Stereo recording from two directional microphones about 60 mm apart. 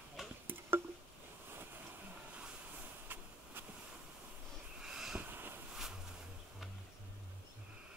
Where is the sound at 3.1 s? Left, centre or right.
Right.